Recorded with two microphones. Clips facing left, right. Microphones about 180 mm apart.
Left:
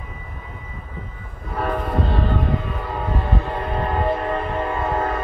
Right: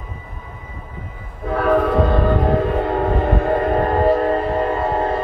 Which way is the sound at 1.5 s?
90° right.